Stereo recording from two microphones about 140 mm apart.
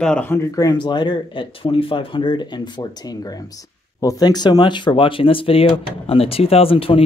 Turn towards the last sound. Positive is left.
turn(degrees=40)  # may be behind; listen again after turning